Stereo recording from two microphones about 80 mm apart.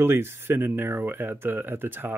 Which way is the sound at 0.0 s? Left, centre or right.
Right.